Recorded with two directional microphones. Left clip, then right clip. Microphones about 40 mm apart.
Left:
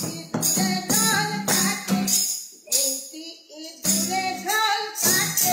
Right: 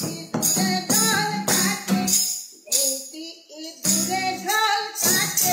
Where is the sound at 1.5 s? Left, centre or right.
Right.